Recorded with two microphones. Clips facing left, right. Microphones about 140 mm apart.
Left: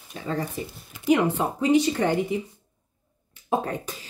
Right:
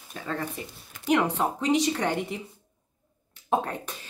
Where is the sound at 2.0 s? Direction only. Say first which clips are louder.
Left 5 dB; centre (ahead or behind).